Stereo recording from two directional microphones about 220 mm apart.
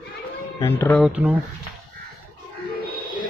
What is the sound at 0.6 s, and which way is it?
Speech, 10° left (ahead or behind).